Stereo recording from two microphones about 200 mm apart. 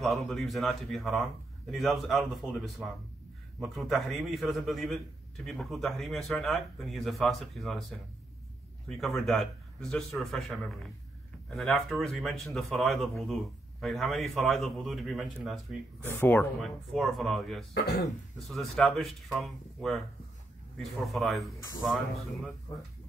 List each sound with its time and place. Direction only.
0.0 s a man's voice: centre (ahead or behind)